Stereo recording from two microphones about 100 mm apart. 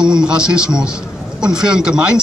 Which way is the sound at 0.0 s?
10° right (ahead or behind).